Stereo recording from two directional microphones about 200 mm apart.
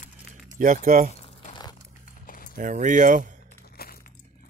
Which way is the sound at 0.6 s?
45° right (ahead or behind).